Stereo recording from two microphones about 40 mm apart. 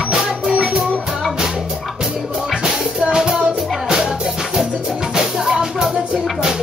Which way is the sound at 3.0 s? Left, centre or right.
Right.